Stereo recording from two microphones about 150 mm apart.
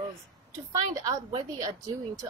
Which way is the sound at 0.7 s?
25° right (ahead or behind).